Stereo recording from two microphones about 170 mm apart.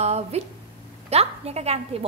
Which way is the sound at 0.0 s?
40° right (ahead or behind).